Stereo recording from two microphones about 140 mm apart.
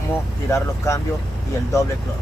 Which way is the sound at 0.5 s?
20° left (ahead or behind).